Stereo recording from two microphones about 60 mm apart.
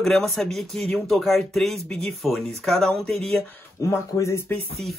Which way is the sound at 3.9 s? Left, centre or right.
Left.